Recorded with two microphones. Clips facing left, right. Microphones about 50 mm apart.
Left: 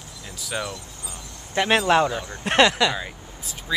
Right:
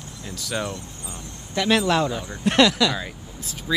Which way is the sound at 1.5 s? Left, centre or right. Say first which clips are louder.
Left 2 dB; left.